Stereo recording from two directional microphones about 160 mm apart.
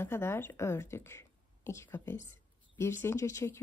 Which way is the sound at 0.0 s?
15° left (ahead or behind).